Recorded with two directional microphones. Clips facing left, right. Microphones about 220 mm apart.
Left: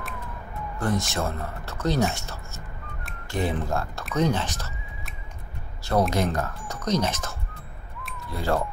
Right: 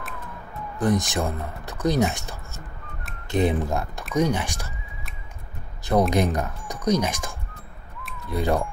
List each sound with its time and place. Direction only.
0.7 s speech: 15° right (ahead or behind)
5.9 s speech: 15° right (ahead or behind)